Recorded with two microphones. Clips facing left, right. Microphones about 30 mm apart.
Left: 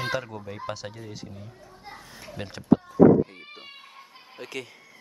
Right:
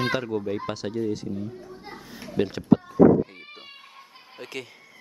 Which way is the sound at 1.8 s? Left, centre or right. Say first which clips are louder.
Right 3 dB; centre.